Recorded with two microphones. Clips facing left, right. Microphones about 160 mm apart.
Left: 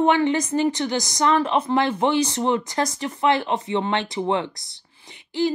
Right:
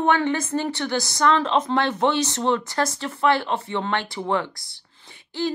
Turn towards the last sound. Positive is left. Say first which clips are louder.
# left 4 dB
turn(degrees=15)  # may be behind; listen again after turning